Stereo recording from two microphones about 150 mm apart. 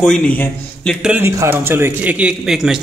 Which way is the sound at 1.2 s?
20° right (ahead or behind).